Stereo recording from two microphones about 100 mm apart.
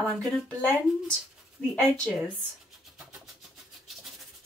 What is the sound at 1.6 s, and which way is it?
Speech, 10° left (ahead or behind).